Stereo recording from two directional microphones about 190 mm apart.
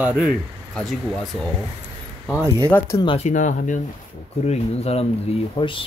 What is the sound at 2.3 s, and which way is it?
Speech, 15° right (ahead or behind).